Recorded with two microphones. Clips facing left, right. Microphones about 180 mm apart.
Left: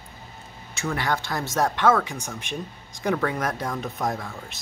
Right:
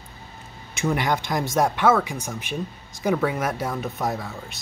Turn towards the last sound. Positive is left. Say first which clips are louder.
# right 1 dB
turn(degrees=-5)  # may be behind; listen again after turning